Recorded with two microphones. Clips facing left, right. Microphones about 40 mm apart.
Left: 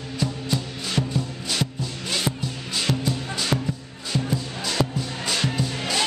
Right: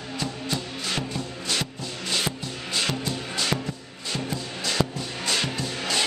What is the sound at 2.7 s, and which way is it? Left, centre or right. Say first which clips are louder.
Music: left 2 dB; centre.